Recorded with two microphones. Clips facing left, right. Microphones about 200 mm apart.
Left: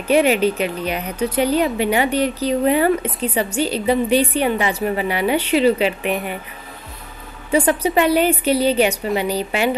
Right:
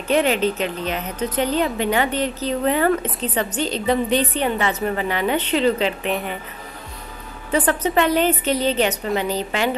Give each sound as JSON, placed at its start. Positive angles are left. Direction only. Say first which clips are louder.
{"t": 0.1, "sound": "speech", "louder": "left 3 dB", "side_deg": 10}
{"t": 7.5, "sound": "speech", "louder": "left 2 dB", "side_deg": 10}